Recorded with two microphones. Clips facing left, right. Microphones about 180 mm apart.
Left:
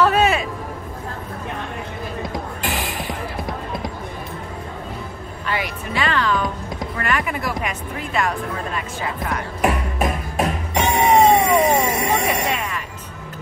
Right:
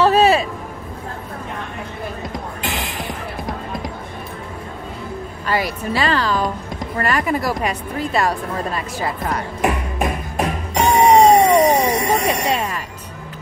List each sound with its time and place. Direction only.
0.0 s music: 30° right (ahead or behind)
2.3 s music: centre (ahead or behind)
5.5 s music: 35° right (ahead or behind)
7.0 s speech: 35° right (ahead or behind)
10.7 s a sound: centre (ahead or behind)
12.5 s music: 35° right (ahead or behind)